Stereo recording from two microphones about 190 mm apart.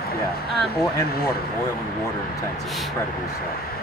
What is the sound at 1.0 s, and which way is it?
Speech, 55° left (ahead or behind).